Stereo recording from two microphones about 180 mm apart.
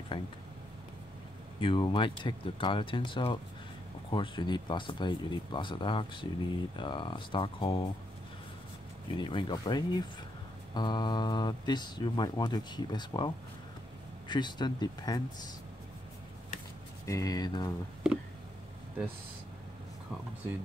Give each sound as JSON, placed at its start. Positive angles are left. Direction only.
{"t": 0.1, "sound": "speech", "side_deg": 30}
{"t": 1.6, "sound": "speech", "side_deg": 30}
{"t": 9.1, "sound": "speech", "side_deg": 25}
{"t": 17.0, "sound": "speech", "side_deg": 20}